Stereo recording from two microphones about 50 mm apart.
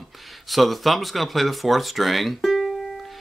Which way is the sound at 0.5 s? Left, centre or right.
Centre.